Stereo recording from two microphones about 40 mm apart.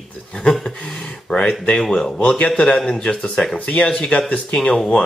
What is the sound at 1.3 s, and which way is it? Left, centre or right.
Speech, left.